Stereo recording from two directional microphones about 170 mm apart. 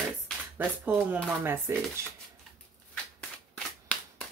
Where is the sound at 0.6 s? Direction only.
10° right (ahead or behind).